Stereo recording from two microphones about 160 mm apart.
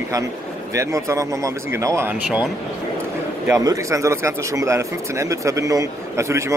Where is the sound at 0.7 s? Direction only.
20° right (ahead or behind).